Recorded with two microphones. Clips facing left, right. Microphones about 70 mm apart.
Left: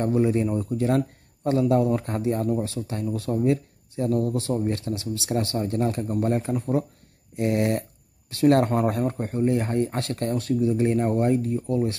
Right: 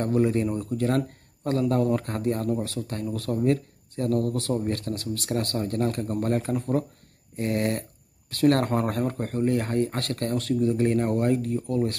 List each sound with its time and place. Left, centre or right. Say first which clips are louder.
0.0 s speech: left 1 dB; centre
4.9 s speech: left 2 dB; centre
5.3 s speech: left 2 dB; centre
6.5 s speech: left 1 dB; centre
7.3 s a sound: left 3 dB; centre
8.4 s speech: left 2 dB; centre
8.6 s speech: left 2 dB; centre